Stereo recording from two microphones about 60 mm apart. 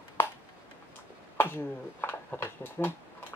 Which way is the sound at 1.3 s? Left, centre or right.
Left.